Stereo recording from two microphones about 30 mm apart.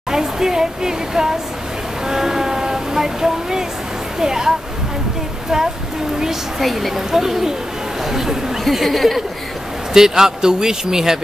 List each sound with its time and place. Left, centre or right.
0.1 s speech: centre
2.0 s vehicle: centre
4.2 s speech: centre
6.6 s speech: centre
7.1 s speech: centre
9.9 s speech: centre